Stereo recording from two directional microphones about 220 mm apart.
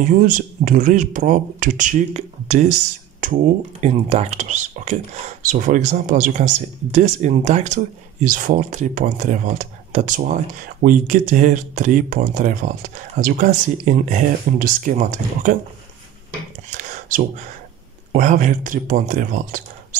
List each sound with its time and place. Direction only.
0.0 s speech: 35° right (ahead or behind)
3.2 s a sound: 35° right (ahead or behind)
3.8 s speech: 30° right (ahead or behind)
18.1 s speech: 35° right (ahead or behind)